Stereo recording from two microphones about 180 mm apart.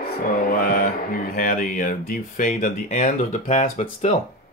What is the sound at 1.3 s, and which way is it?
Speech, 50° left (ahead or behind).